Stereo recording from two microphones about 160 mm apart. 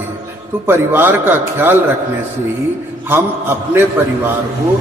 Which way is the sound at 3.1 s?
15° right (ahead or behind).